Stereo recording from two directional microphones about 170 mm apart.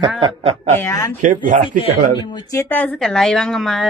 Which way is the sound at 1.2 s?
45° right (ahead or behind).